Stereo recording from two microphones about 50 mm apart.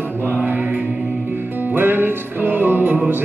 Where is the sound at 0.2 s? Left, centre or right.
Right.